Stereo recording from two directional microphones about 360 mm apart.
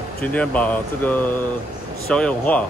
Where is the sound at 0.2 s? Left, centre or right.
Centre.